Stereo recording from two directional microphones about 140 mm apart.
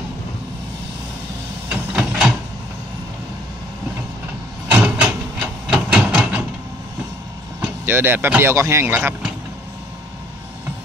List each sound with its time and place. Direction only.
1.7 s a sound: 5° right (ahead or behind)
4.6 s printer: 10° right (ahead or behind)
7.6 s speech: 15° right (ahead or behind)